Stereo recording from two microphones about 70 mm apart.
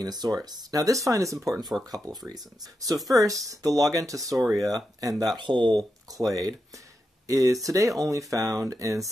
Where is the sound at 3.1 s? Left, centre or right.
Right.